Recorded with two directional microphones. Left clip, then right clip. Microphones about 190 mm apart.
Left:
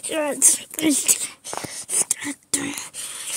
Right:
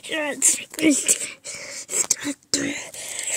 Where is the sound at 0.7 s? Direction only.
20° left (ahead or behind).